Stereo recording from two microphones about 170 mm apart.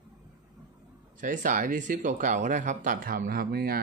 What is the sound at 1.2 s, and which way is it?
Speech, 50° right (ahead or behind).